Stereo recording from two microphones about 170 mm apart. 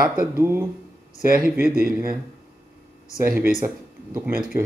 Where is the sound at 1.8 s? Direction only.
60° right (ahead or behind).